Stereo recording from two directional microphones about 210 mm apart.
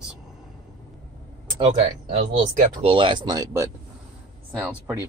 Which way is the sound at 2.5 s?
25° right (ahead or behind).